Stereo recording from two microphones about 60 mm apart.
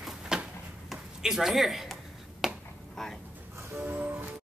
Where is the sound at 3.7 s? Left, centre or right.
Right.